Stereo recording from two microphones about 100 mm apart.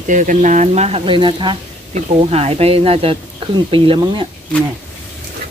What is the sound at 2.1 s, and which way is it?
Speech, 80° right.